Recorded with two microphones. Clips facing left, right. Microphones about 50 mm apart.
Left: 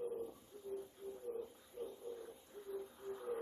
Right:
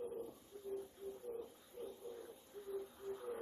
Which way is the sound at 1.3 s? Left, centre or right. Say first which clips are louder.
Left 2 dB; centre.